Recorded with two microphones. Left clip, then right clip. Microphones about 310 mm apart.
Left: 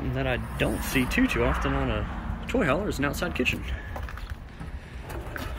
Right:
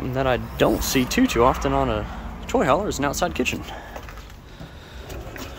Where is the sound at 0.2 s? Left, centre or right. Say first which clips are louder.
Right 8 dB; centre.